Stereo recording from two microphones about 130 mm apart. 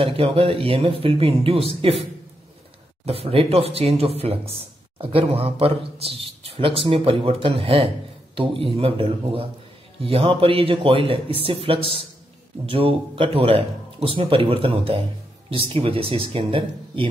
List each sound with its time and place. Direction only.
0.0 s speech: 45° right (ahead or behind)
3.1 s speech: 50° right (ahead or behind)